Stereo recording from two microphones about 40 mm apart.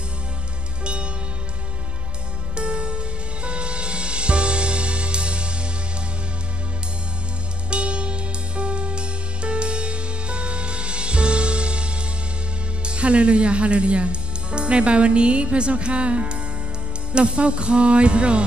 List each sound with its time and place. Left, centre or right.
2.5 s music: right
7.7 s music: right
12.8 s speech: right
17.1 s music: right